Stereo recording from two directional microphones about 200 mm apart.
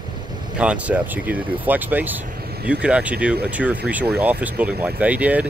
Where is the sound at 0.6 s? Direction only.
5° right (ahead or behind).